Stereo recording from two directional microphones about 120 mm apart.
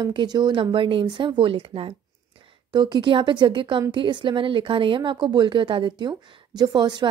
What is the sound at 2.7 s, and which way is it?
A woman's voice, 40° right (ahead or behind).